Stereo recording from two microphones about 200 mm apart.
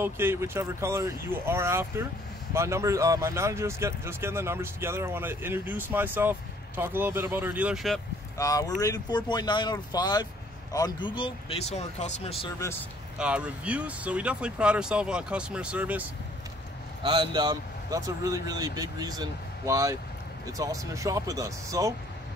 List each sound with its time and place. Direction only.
0.0 s speech: 10° right (ahead or behind)
8.4 s speech: 15° left (ahead or behind)
13.2 s speech: 5° right (ahead or behind)
17.0 s speech: 25° right (ahead or behind)